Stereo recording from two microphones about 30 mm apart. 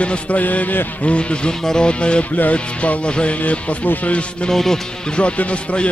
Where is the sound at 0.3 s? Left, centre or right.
Left.